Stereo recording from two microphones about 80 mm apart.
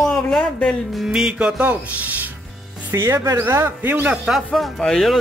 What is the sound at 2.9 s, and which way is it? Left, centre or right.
Speech, right.